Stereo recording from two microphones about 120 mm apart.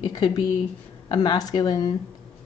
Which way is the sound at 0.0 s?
35° left (ahead or behind).